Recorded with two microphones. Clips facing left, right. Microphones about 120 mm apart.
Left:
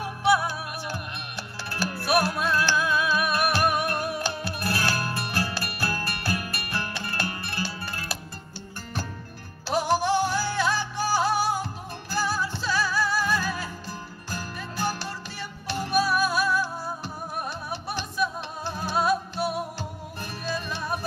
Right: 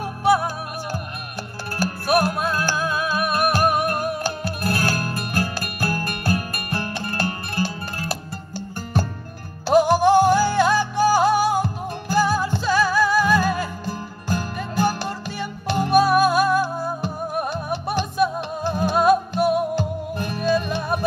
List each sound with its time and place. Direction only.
0.0 s music: 45° right (ahead or behind)